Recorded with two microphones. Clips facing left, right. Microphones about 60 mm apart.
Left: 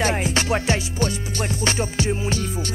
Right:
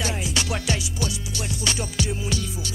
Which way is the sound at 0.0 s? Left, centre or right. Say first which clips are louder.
Left 6 dB; left.